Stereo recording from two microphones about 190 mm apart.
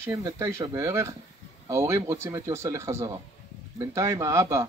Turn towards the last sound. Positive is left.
turn(degrees=-15)  # may be behind; listen again after turning